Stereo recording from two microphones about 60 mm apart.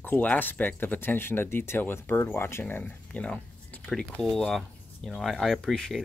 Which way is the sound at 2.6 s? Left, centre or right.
Left.